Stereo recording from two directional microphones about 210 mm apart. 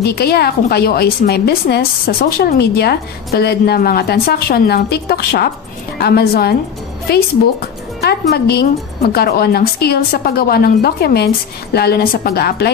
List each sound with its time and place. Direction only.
0.0 s a woman's voice: 50° left (ahead or behind)
8.0 s a woman's voice: 50° left (ahead or behind)